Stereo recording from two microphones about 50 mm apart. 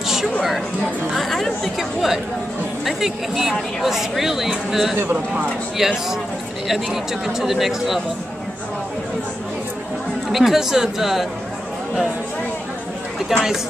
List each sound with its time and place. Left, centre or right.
1.1 s speech: centre
5.1 s speech: right
5.8 s speech: centre
10.3 s speech: centre
13.3 s speech: centre